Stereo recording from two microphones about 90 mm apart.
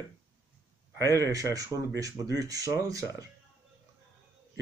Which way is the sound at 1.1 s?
35° right (ahead or behind).